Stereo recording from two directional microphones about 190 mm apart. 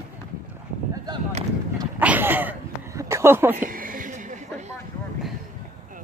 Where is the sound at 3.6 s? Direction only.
45° right (ahead or behind).